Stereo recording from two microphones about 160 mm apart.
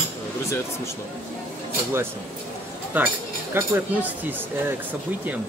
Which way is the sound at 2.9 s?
10° right (ahead or behind).